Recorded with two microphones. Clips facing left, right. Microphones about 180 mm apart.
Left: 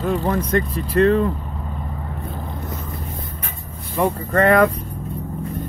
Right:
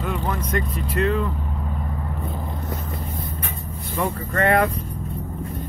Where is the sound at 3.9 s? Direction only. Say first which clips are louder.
Left 5 dB; 40° left (ahead or behind).